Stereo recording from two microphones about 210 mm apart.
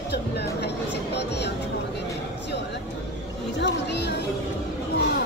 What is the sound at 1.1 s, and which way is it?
Vehicle, 55° left (ahead or behind).